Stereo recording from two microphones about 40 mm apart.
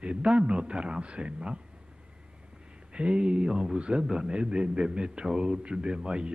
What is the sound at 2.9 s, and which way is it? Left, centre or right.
A man's voice, right.